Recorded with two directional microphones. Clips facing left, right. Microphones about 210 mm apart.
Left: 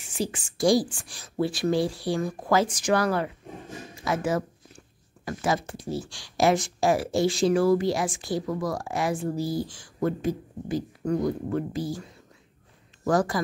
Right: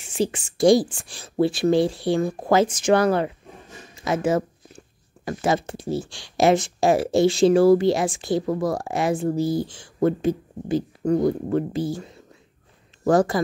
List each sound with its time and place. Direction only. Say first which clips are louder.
0.2 s speech: right 6 dB; 25° right (ahead or behind)